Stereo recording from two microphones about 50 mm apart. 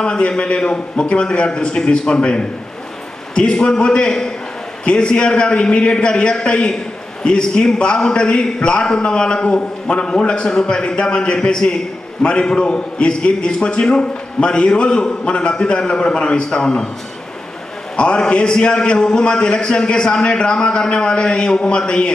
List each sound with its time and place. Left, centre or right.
0.0 s a man's voice: centre
17.9 s a man's voice: centre